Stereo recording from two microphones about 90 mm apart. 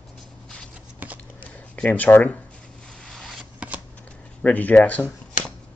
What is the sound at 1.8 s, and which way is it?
Speech, 20° left (ahead or behind).